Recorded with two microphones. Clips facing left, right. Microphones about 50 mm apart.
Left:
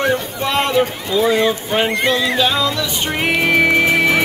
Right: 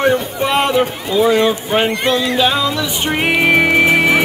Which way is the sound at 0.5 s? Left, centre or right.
Centre.